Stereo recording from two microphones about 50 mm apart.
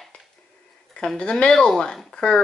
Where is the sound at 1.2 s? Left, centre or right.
Centre.